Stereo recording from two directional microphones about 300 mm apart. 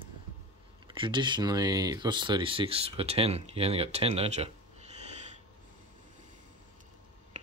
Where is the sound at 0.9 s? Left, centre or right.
Centre.